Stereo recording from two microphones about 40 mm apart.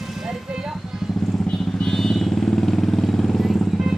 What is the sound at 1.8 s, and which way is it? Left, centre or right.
Vehicle, centre.